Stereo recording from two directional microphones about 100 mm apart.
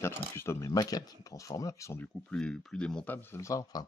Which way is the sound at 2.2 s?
5° left (ahead or behind).